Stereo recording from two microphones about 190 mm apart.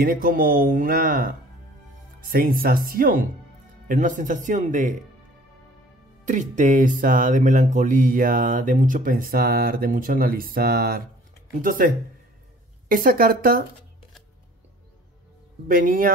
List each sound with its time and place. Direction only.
0.0 s speech: 50° right (ahead or behind)
6.2 s speech: 40° right (ahead or behind)
15.7 s speech: 45° right (ahead or behind)